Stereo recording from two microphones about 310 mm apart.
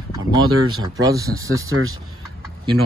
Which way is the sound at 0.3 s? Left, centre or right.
Centre.